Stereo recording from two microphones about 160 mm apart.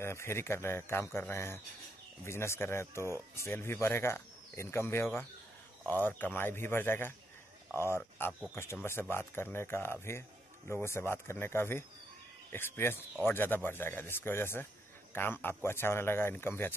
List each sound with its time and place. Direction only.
0.0 s speech: 15° left (ahead or behind)